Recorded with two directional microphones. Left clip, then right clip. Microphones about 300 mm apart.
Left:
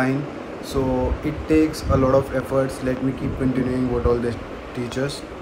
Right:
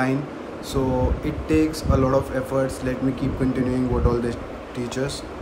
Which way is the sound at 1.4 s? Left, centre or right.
Centre.